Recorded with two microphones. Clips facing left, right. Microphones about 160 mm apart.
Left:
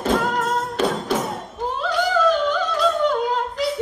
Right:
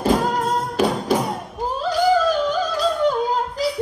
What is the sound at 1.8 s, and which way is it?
Yodeling, 35° right (ahead or behind).